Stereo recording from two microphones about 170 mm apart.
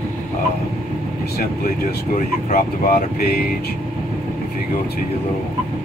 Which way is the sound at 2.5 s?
60° left (ahead or behind).